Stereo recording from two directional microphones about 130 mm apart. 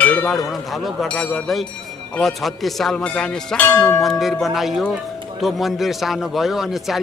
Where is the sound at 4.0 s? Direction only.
Centre (ahead or behind).